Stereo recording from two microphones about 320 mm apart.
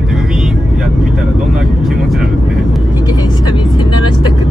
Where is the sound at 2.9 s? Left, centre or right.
Centre.